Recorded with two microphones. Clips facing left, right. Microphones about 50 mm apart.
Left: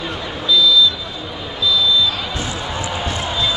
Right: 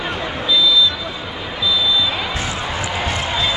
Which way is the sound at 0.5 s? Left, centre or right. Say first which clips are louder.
Left 2 dB; right.